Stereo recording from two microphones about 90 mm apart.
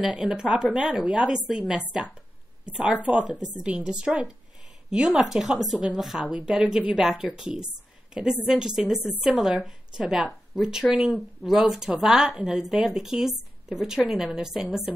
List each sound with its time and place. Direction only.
0.0 s a woman's voice: 10° right (ahead or behind)